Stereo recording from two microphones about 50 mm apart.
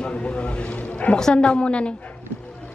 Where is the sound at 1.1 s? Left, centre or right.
Centre.